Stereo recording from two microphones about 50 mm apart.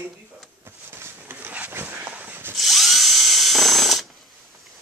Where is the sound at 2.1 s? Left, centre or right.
Right.